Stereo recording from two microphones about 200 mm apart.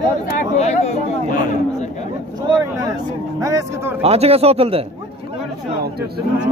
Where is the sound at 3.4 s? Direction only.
15° right (ahead or behind).